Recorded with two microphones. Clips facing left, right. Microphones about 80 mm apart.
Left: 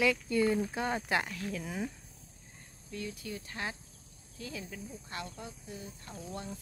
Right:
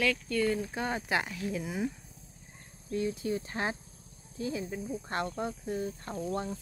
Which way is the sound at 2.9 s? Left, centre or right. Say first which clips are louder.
Right 9 dB; right.